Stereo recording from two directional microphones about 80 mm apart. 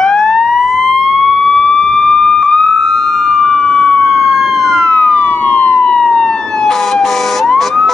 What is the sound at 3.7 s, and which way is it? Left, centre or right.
Emergency vehicle, centre.